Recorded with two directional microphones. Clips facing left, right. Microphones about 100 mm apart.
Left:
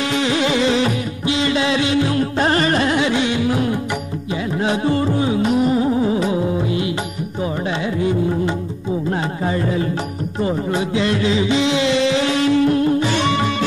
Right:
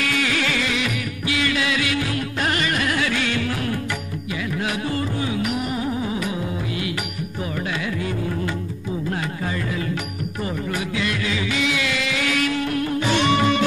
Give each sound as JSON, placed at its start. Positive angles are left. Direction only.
{"t": 0.0, "sound": "music", "side_deg": 25}
{"t": 8.0, "sound": "music", "side_deg": 25}